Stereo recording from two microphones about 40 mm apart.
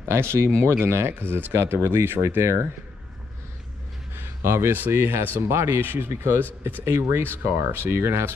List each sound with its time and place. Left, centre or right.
0.1 s speech: right
4.1 s a sound: right
4.9 s speech: right
5.8 s speech: right